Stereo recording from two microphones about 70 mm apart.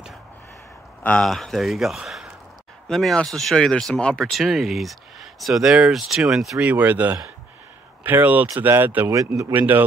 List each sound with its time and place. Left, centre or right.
1.2 s speech: centre
4.2 s speech: centre
6.6 s speech: right
9.1 s speech: right
9.5 s speech: right